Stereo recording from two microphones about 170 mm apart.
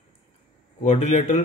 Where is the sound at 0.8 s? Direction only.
45° left (ahead or behind).